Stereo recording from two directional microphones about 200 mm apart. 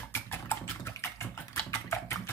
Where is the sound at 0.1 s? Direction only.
10° left (ahead or behind).